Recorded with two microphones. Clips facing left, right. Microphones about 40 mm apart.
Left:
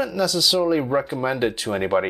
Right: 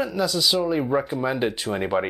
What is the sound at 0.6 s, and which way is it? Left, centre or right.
Speech, centre.